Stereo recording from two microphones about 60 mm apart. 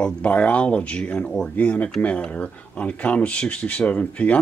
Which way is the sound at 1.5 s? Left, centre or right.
Left.